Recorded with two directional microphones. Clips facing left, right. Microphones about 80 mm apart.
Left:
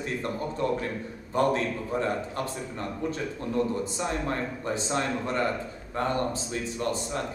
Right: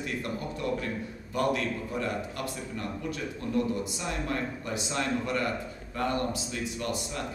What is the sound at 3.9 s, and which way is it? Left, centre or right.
Speech, left.